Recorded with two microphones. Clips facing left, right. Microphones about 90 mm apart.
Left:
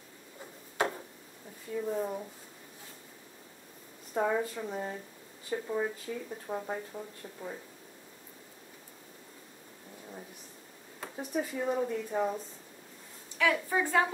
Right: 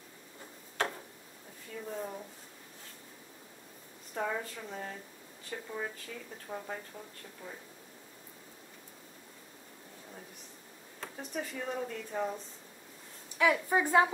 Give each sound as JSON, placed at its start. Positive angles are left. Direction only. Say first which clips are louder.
{"t": 0.7, "sound": "tick-tock", "louder": "left 3 dB", "side_deg": 10}
{"t": 1.7, "sound": "speech", "louder": "left 7 dB", "side_deg": 10}
{"t": 4.1, "sound": "speech", "louder": "left 6 dB", "side_deg": 15}
{"t": 11.0, "sound": "speech", "louder": "left 5 dB", "side_deg": 10}
{"t": 13.4, "sound": "a woman's voice", "louder": "right 1 dB", "side_deg": -15}